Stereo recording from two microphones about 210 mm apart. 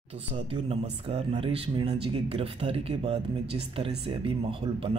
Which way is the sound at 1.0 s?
30° right (ahead or behind).